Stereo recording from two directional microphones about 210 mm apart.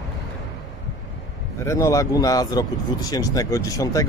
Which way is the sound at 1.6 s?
15° left (ahead or behind).